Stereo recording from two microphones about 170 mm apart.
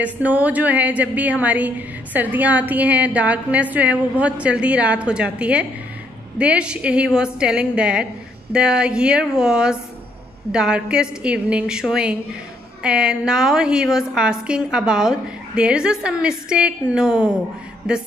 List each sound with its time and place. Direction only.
0.0 s a woman's voice: 10° right (ahead or behind)